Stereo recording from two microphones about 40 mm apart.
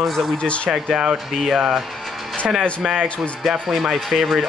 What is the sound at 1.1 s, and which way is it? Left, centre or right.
Speech, centre.